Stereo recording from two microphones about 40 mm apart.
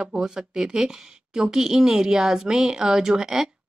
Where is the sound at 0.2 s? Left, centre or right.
Centre.